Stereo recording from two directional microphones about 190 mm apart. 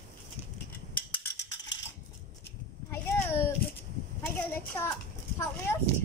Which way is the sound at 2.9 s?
15° left (ahead or behind).